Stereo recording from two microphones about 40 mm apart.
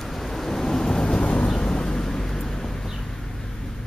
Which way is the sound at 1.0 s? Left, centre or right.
Left.